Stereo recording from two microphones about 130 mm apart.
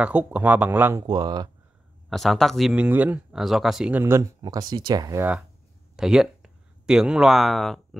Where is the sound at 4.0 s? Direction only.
20° right (ahead or behind).